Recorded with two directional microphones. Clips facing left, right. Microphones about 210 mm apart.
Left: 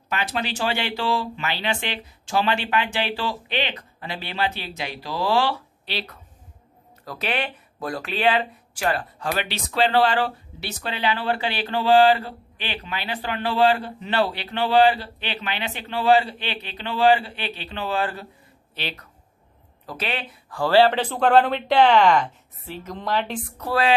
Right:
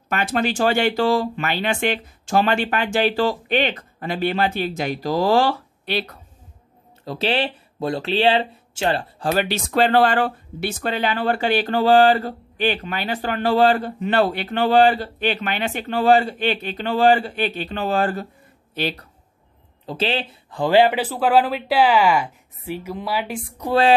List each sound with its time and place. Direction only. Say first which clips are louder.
0.1 s speech: right 5 dB; 50° right (ahead or behind)
7.1 s speech: right 5 dB; 30° right (ahead or behind)
19.9 s speech: right 6 dB; 30° right (ahead or behind); by 23.7 s 10° right (ahead or behind)